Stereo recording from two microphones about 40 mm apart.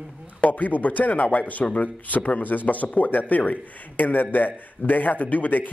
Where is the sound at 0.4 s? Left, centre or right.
Left.